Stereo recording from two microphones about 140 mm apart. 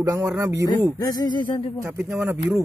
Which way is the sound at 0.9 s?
30° left (ahead or behind).